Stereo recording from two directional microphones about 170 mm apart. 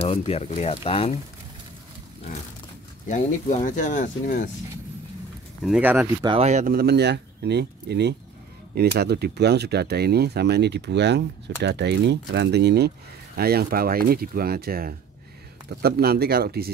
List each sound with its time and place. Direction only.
0.0 s speech: 35° left (ahead or behind)
3.1 s speech: 50° left (ahead or behind)
5.7 s speech: 10° right (ahead or behind)
6.2 s speech: 35° right (ahead or behind); by 12.9 s 75° right (ahead or behind)
13.4 s speech: 65° right (ahead or behind)